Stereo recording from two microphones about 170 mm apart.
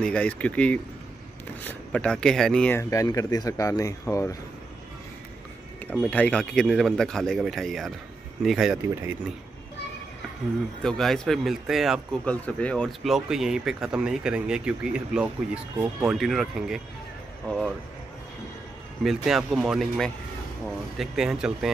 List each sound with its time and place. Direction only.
0.0 s speech: 5° left (ahead or behind)
5.9 s speech: 10° left (ahead or behind)
10.8 s speech: centre (ahead or behind)
19.0 s speech: centre (ahead or behind)